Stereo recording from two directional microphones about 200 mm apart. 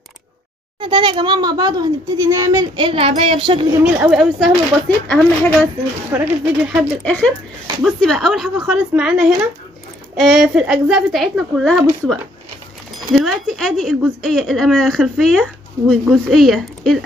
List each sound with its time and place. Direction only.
0.7 s a child's voice: 25° right (ahead or behind)
3.8 s speech: 5° right (ahead or behind)
6.1 s speech: 10° right (ahead or behind)
7.1 s speech: 5° left (ahead or behind)